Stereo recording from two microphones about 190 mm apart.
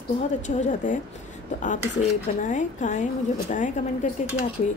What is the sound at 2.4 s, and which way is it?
Speech, 40° left (ahead or behind).